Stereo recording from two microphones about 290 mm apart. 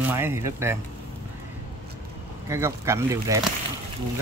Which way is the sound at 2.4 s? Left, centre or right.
Centre.